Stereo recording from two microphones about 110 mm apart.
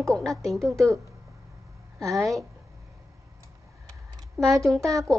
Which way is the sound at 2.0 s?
30° right (ahead or behind).